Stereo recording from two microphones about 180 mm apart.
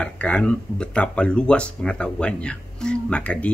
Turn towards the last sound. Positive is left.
turn(degrees=5)  # may be behind; listen again after turning